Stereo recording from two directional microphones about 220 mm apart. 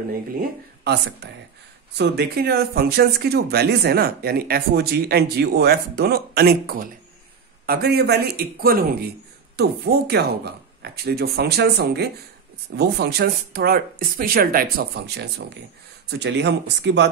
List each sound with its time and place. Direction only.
0.4 s speech: 50° right (ahead or behind)